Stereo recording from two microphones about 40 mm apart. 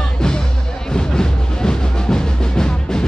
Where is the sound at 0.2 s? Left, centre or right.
Centre.